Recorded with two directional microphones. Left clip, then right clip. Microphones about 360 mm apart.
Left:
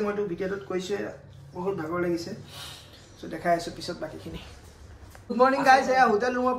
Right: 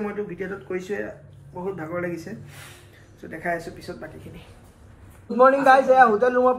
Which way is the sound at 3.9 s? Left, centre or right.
Centre.